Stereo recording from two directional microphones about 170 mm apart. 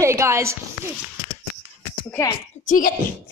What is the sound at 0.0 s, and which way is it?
Speech, 15° right (ahead or behind).